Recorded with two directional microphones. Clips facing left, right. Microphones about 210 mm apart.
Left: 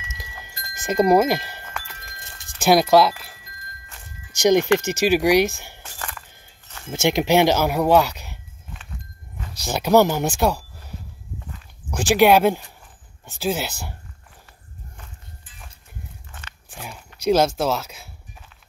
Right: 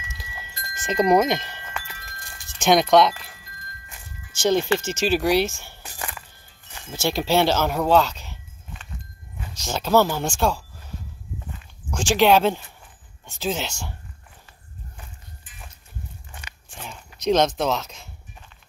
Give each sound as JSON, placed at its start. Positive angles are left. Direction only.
{"t": 0.7, "sound": "wind chime", "side_deg": 10}
{"t": 2.6, "sound": "speech", "side_deg": 5}
{"t": 4.4, "sound": "speech", "side_deg": 15}
{"t": 5.8, "sound": "music", "side_deg": -15}
{"t": 6.9, "sound": "speech", "side_deg": 20}
{"t": 9.6, "sound": "speech", "side_deg": 15}
{"t": 11.9, "sound": "speech", "side_deg": 10}
{"t": 16.3, "sound": "walk", "side_deg": -15}
{"t": 16.7, "sound": "a sound", "side_deg": 10}
{"t": 17.2, "sound": "speech", "side_deg": 10}